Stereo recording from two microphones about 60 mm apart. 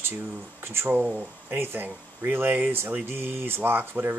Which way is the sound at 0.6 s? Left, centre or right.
Right.